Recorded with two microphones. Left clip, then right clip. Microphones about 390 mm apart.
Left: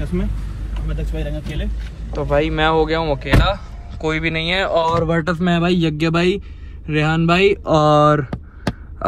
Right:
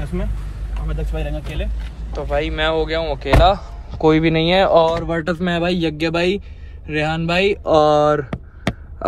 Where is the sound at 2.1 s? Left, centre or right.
Centre.